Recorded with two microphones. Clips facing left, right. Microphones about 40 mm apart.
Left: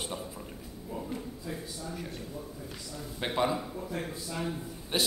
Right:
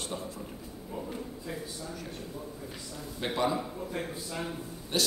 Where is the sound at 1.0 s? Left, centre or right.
Centre.